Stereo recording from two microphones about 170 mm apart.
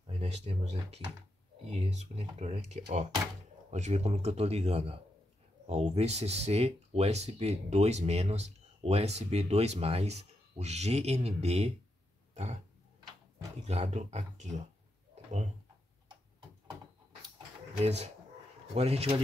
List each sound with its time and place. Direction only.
0.0 s speech: 40° right (ahead or behind)
13.6 s speech: 40° right (ahead or behind)
17.8 s speech: 40° right (ahead or behind)